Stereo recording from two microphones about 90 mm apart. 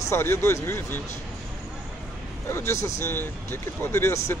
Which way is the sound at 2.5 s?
30° left (ahead or behind).